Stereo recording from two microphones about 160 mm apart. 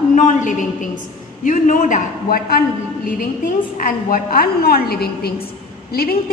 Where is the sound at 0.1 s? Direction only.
50° left (ahead or behind).